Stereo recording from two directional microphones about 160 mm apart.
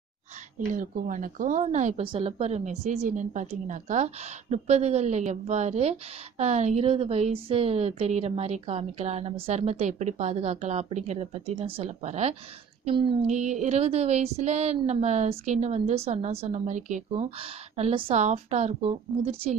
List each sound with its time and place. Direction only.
0.7 s a woman's voice: 55° right (ahead or behind)
2.0 s a woman's voice: 35° right (ahead or behind)
12.8 s a woman's voice: 30° right (ahead or behind)
13.3 s a woman's voice: 45° right (ahead or behind)
17.4 s a woman's voice: 40° right (ahead or behind)